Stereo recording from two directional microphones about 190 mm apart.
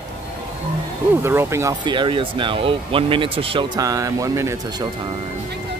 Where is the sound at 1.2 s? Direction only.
10° right (ahead or behind).